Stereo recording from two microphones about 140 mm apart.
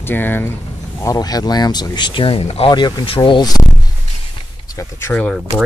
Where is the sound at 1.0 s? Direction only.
25° left (ahead or behind); by 2.7 s 45° left (ahead or behind).